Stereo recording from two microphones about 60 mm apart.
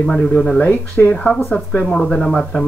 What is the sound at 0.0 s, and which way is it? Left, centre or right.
Speech, centre.